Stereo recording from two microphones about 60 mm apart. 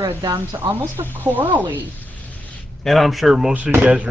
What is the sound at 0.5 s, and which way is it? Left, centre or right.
Speech, right.